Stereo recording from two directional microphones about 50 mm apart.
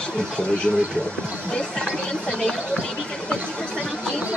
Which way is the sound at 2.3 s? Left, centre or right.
Centre.